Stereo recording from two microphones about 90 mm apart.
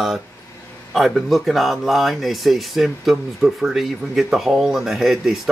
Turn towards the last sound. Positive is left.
turn(degrees=-5)  # may be behind; listen again after turning